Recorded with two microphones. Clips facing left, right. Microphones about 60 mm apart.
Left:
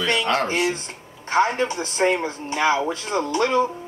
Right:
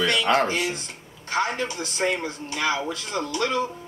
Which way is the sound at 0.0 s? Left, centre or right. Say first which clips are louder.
Left 1 dB; centre.